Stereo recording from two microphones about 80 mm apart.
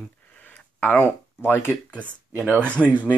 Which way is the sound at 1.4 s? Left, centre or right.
Left.